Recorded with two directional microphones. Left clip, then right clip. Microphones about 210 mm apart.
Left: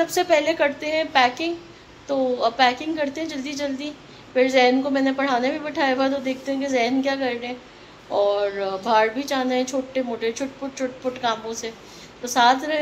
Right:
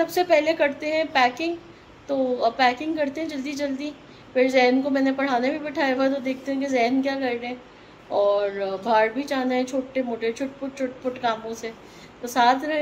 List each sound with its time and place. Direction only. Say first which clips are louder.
0.0 s a woman's voice: left 1 dB; 5° right (ahead or behind)